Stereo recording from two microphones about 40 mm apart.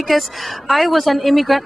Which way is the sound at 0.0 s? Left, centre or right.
Centre.